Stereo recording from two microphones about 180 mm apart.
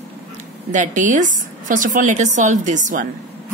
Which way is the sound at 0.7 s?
45° right (ahead or behind).